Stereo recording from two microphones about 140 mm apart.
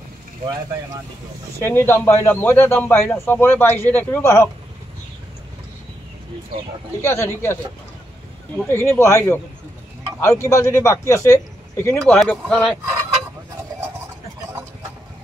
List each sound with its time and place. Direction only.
1.6 s speech: 15° left (ahead or behind)
7.0 s speech: 20° left (ahead or behind)
8.6 s a man's voice: 15° left (ahead or behind)
12.3 s speech: 5° left (ahead or behind)